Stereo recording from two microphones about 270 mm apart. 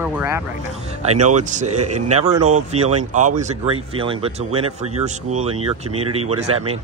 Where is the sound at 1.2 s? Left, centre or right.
Right.